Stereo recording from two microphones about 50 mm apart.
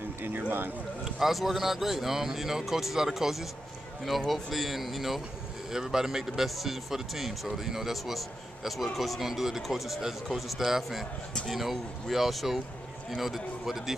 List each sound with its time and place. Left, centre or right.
0.4 s speech: right
1.2 s speech: centre